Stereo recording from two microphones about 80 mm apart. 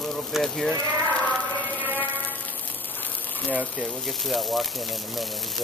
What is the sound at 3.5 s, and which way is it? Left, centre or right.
Speech, centre.